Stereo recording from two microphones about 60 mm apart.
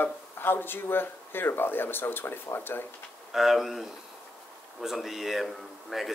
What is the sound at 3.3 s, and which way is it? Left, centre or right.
Speech, centre.